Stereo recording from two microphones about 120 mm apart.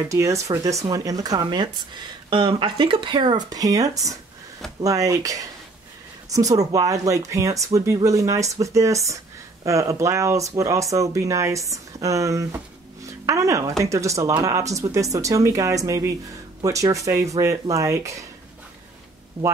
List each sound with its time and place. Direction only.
0.1 s speech: 25° right (ahead or behind)